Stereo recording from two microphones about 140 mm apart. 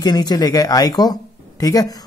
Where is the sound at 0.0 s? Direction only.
30° left (ahead or behind).